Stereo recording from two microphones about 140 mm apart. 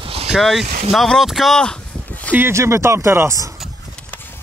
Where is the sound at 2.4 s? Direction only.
20° right (ahead or behind).